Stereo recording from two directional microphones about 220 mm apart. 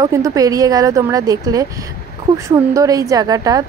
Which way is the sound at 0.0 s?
15° right (ahead or behind).